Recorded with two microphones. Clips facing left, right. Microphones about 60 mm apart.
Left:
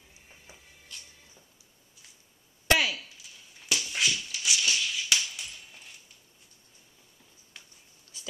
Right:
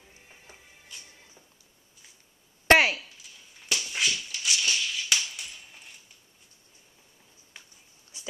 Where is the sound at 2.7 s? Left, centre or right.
Right.